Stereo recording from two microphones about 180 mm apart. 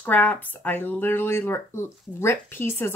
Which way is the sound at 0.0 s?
10° left (ahead or behind).